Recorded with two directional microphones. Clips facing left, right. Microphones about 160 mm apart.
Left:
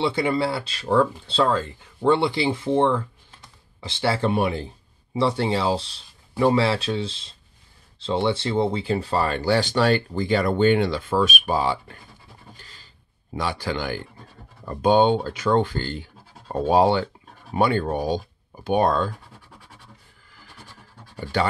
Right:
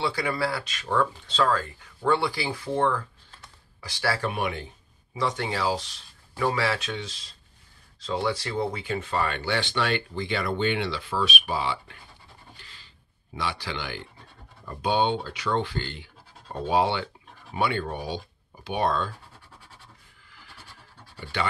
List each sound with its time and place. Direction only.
0.0 s speech: 25° left (ahead or behind); by 12.0 s 40° left (ahead or behind)
12.5 s a sound: 40° left (ahead or behind)
13.3 s speech: 45° left (ahead or behind)
21.2 s speech: 40° left (ahead or behind)